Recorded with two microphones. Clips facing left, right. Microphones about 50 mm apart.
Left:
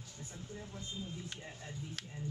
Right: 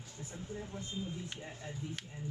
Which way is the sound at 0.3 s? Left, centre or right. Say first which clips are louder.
Right 5 dB; centre.